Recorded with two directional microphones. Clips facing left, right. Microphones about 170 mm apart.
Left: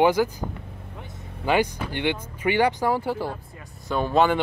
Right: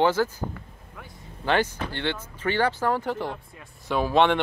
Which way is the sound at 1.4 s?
10° left (ahead or behind).